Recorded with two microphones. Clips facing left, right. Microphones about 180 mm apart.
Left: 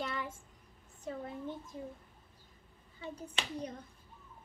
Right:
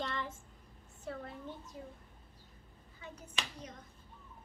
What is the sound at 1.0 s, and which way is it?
Speech, 15° left (ahead or behind).